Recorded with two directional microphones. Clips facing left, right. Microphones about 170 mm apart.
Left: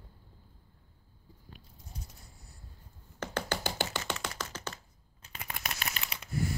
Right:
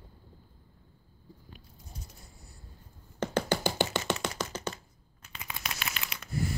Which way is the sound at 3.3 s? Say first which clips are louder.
Right 5 dB; 15° right (ahead or behind).